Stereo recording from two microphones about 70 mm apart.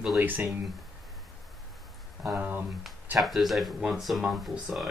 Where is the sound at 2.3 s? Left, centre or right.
Centre.